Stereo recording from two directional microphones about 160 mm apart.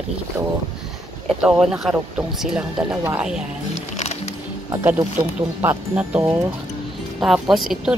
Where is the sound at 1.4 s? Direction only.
5° right (ahead or behind).